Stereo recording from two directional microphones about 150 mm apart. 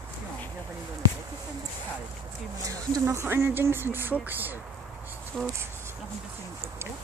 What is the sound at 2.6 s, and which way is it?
Speech, 20° right (ahead or behind).